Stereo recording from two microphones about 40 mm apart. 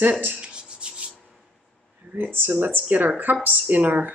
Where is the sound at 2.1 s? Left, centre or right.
Right.